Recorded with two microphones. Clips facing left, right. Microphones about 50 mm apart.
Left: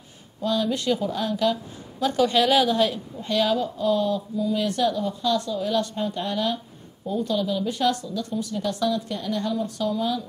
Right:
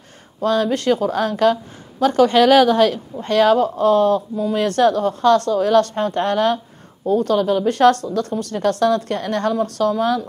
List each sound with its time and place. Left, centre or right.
0.4 s a woman's voice: right